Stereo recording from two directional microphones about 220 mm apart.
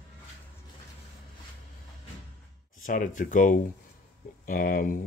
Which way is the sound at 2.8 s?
35° left (ahead or behind).